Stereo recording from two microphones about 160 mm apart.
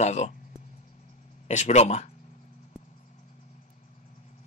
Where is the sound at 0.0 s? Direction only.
45° left (ahead or behind).